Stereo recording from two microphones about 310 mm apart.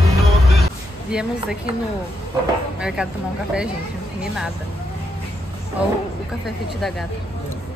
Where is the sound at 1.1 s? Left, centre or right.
Centre.